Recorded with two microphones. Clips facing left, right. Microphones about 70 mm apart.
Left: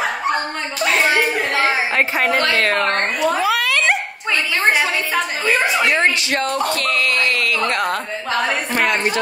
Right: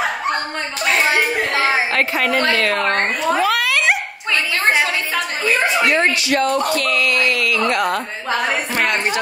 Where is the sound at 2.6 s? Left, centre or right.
Left.